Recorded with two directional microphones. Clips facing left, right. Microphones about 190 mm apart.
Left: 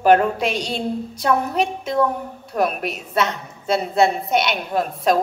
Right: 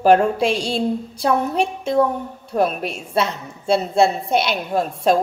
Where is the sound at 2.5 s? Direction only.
25° right (ahead or behind).